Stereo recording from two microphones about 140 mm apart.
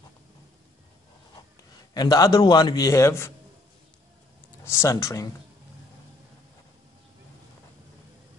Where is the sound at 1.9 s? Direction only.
25° left (ahead or behind).